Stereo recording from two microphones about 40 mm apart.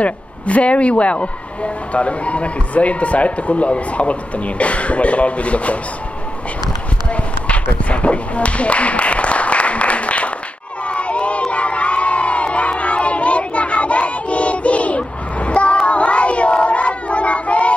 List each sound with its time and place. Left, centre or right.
0.0 s speech: left
7.1 s tap: left
10.9 s crowd: left